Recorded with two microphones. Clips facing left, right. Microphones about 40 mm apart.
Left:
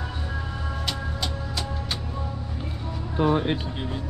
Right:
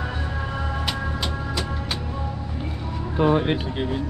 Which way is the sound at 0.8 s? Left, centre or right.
Centre.